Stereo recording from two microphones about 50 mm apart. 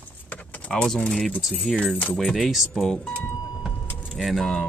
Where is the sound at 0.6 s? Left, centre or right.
Left.